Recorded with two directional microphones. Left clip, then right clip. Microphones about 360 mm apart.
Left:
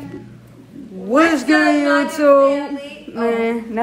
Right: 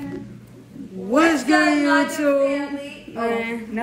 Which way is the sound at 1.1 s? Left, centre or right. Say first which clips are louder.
Left 3 dB; centre.